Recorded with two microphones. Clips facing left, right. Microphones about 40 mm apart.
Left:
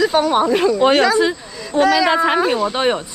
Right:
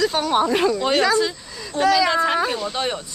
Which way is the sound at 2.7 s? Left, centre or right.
Left.